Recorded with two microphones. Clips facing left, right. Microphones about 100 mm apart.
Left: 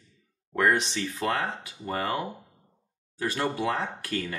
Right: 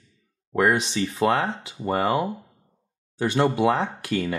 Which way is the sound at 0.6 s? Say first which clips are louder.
Right 3 dB; 10° right (ahead or behind).